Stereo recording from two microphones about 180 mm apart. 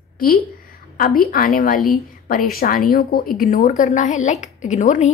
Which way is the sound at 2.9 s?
55° left (ahead or behind).